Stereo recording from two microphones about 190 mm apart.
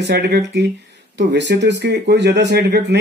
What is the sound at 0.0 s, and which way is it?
Speech, 65° right (ahead or behind).